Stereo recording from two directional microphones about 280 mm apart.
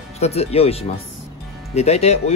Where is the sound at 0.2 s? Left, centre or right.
Left.